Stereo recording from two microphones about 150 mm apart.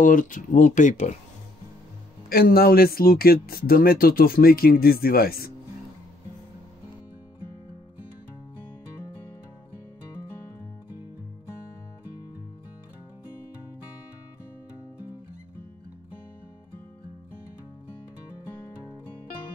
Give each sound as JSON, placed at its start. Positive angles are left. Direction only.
{"t": 0.0, "sound": "speech", "side_deg": 65}
{"t": 2.2, "sound": "speech", "side_deg": 80}